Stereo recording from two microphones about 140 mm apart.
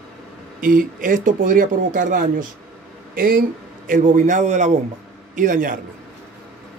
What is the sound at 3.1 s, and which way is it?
Speech, 90° right.